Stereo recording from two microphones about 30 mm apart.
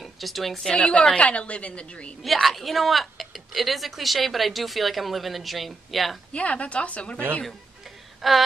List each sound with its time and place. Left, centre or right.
0.0 s speech: centre
0.7 s a woman's voice: left
2.4 s speech: centre
6.3 s a woman's voice: left
8.2 s a sound: centre